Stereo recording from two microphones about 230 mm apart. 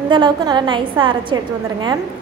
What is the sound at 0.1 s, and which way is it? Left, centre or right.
A woman's voice, centre.